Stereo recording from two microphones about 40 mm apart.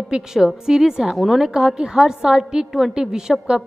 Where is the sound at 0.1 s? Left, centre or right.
Centre.